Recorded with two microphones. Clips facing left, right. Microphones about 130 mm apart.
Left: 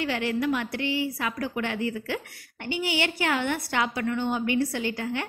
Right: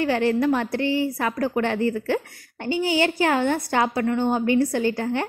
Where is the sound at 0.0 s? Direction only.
45° right (ahead or behind).